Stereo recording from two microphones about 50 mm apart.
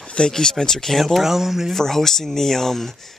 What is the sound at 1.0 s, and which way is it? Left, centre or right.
Speech, centre.